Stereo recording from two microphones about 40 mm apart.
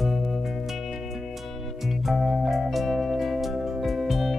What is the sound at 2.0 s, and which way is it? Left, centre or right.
Music, centre.